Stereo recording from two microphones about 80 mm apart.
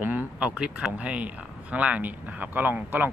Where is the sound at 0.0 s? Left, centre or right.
Right.